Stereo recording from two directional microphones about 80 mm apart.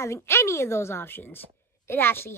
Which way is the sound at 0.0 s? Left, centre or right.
Left.